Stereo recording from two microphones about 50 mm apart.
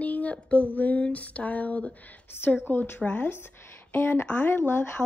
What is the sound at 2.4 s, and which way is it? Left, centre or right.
Speech, left.